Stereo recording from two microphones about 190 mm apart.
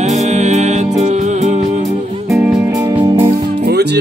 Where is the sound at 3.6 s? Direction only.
60° right (ahead or behind).